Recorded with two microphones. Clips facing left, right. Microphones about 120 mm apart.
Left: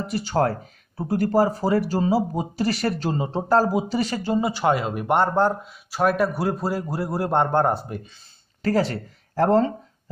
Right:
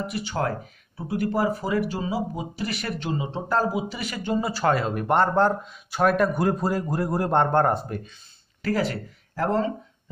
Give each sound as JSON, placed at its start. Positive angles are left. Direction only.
{"t": 0.0, "sound": "speech", "side_deg": 40}
{"t": 4.4, "sound": "speech", "side_deg": 20}
{"t": 8.6, "sound": "speech", "side_deg": 35}